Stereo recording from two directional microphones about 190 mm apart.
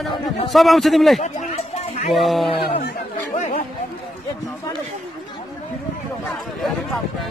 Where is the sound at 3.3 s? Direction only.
40° left (ahead or behind).